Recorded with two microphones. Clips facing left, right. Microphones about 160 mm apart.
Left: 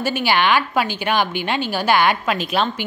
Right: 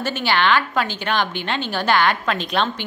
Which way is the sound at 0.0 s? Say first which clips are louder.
Left 2 dB; 10° left (ahead or behind).